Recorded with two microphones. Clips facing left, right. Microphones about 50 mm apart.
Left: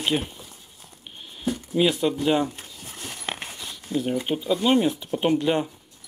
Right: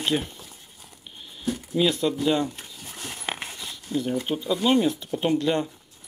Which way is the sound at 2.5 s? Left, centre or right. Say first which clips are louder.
Even; centre.